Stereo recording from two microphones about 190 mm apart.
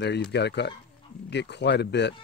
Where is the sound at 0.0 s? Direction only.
60° left (ahead or behind).